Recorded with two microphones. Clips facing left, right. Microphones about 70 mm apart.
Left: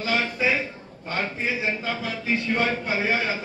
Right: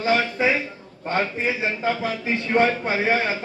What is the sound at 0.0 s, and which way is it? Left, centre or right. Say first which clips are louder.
A man's voice: right 4 dB; right.